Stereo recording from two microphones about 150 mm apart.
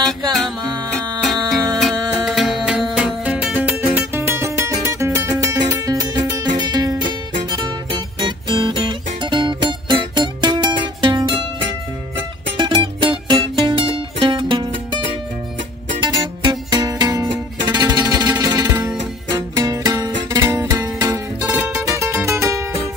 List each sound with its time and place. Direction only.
1.2 s music: centre (ahead or behind); by 11.4 s 30° right (ahead or behind)
12.5 s music: 35° right (ahead or behind)
16.0 s music: 30° right (ahead or behind)
21.1 s music: 10° right (ahead or behind)